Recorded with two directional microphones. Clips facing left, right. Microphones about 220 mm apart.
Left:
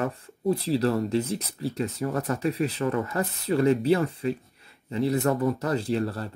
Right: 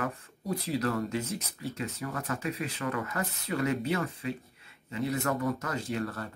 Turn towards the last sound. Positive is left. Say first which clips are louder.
# left 6 dB
turn(degrees=30)  # may be behind; listen again after turning